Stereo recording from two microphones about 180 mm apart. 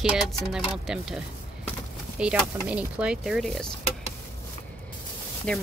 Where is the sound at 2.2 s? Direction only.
5° right (ahead or behind).